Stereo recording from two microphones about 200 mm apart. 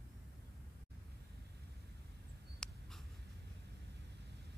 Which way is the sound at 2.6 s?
5° left (ahead or behind).